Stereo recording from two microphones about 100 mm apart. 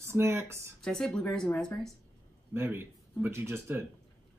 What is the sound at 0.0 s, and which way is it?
Speech, 25° right (ahead or behind).